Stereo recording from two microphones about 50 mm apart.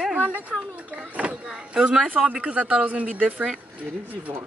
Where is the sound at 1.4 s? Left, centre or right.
Centre.